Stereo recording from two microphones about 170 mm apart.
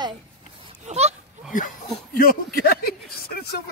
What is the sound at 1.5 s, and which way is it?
Speech, 55° left (ahead or behind).